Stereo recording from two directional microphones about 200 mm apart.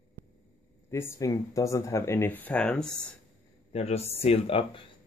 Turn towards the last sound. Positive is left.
turn(degrees=30)  # may be behind; listen again after turning